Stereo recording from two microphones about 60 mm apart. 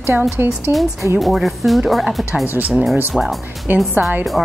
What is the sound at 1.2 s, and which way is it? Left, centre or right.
A woman's voice, centre.